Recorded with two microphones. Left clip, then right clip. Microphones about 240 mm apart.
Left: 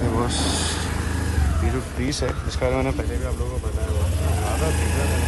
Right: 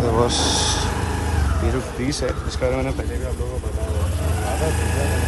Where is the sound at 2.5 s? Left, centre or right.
Centre.